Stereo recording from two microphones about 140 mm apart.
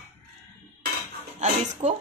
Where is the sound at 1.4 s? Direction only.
60° right (ahead or behind).